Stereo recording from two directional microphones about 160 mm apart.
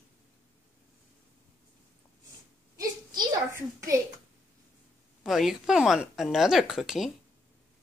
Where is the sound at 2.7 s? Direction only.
20° right (ahead or behind).